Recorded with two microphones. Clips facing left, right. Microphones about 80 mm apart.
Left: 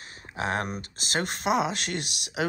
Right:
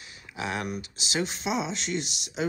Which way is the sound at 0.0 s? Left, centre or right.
Left.